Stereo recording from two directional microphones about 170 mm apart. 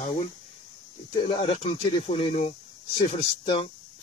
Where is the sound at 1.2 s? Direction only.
40° left (ahead or behind).